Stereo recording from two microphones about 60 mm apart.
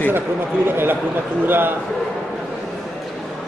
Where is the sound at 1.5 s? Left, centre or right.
Right.